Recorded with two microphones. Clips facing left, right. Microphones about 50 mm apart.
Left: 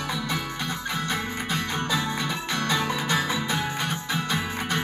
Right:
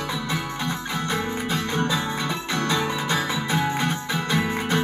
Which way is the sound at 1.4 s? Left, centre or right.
Centre.